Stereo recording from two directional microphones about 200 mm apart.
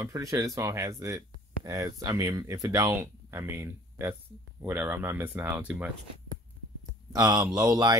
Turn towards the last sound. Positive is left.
turn(degrees=-20)  # may be behind; listen again after turning